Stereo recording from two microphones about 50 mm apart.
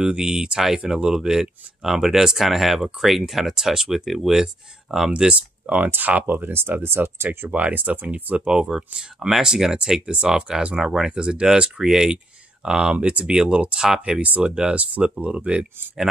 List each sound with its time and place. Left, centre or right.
0.0 s speech: centre
5.3 s speech: right
7.2 s speech: right
8.5 s speech: centre; by 13.2 s right
13.2 s speech: centre